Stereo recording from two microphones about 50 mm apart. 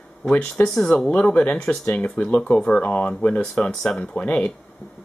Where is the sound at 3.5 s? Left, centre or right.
Centre.